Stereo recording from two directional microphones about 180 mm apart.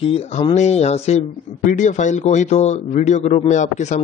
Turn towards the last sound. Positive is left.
turn(degrees=40)  # may be behind; listen again after turning